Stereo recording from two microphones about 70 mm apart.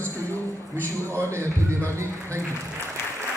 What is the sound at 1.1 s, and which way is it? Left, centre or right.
A man's voice, right.